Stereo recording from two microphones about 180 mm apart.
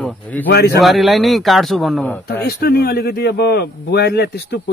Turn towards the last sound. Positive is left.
turn(degrees=65)  # may be behind; listen again after turning